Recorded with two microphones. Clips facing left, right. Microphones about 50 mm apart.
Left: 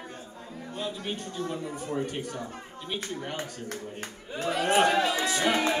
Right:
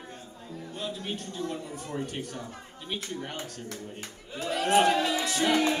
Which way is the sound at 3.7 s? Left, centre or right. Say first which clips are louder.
Left 3 dB; left.